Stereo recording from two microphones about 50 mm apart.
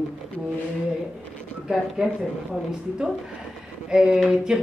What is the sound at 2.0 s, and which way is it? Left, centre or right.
Speech, centre.